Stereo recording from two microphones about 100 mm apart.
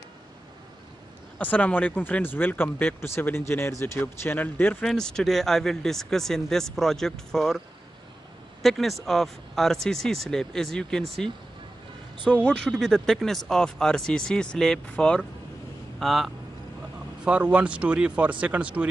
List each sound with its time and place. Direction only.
1.4 s speech: 15° left (ahead or behind)
4.8 s speech: 5° left (ahead or behind)
8.6 s speech: centre (ahead or behind)
12.3 s speech: 10° left (ahead or behind)
17.2 s speech: 10° right (ahead or behind)